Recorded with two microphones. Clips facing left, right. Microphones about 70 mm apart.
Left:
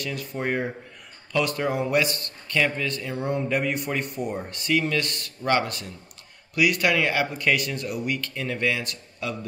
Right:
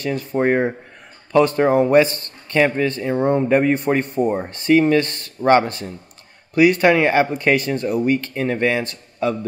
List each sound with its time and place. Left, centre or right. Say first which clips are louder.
0.0 s speech: right 10 dB; right